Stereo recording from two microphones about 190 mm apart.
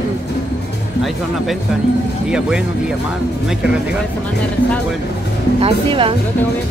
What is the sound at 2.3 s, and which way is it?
Speech, 5° right (ahead or behind).